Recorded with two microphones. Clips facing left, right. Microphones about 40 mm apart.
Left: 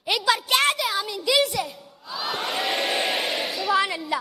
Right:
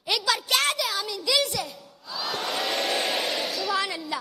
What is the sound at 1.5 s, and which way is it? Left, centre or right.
Crowd, centre.